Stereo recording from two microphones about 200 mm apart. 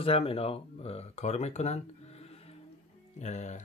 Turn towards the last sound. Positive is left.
turn(degrees=35)  # may be behind; listen again after turning